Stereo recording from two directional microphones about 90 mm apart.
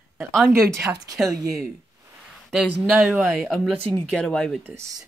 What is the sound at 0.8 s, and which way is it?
Speech, 45° right (ahead or behind).